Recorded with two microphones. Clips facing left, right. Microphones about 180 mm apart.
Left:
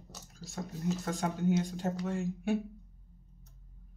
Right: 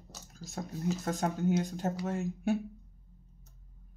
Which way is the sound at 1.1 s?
45° right (ahead or behind).